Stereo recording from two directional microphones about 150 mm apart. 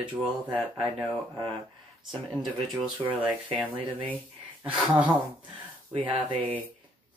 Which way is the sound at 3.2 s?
35° right (ahead or behind).